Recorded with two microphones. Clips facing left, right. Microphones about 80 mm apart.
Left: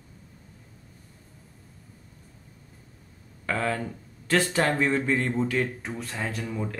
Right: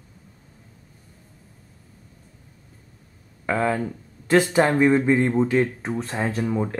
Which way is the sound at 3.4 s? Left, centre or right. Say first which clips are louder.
Right 5 dB; centre.